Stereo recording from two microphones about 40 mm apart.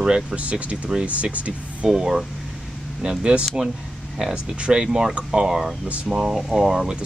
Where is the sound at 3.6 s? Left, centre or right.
Centre.